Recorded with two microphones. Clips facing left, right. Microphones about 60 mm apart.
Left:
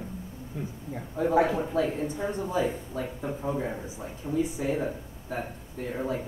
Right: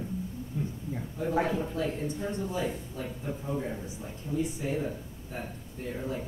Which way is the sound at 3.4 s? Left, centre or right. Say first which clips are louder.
Left 4 dB; left.